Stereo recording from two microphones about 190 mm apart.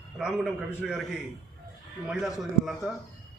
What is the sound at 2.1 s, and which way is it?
Speech, 5° right (ahead or behind).